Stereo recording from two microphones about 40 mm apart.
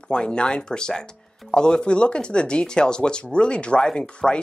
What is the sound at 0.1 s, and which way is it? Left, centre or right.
Speech, left.